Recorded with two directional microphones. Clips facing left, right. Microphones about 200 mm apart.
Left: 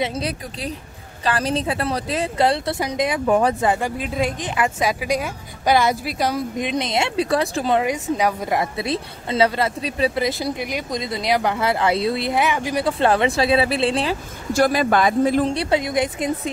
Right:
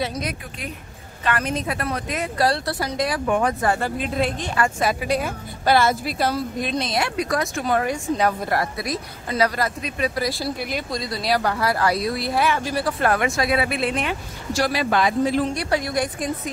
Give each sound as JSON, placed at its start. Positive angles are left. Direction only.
{"t": 0.0, "sound": "speech", "side_deg": 30}
{"t": 3.3, "sound": "speech", "side_deg": 35}
{"t": 3.6, "sound": "a woman's voice", "side_deg": 15}
{"t": 8.7, "sound": "speech", "side_deg": 25}
{"t": 14.5, "sound": "speech", "side_deg": 50}
{"t": 15.5, "sound": "speech", "side_deg": 25}